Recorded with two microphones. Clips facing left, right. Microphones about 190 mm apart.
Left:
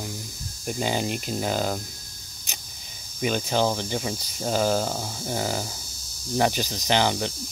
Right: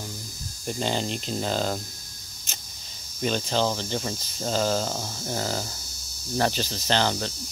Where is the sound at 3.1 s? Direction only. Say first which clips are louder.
Left 1 dB; 10° left (ahead or behind).